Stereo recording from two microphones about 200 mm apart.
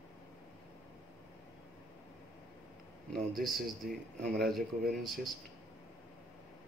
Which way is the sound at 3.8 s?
45° right (ahead or behind).